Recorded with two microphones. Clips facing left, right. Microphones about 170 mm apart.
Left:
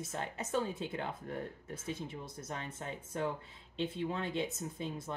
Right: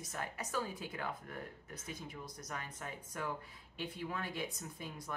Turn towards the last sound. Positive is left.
turn(degrees=25)  # may be behind; listen again after turning